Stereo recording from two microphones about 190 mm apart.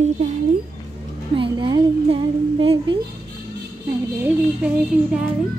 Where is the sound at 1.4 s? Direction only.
25° right (ahead or behind).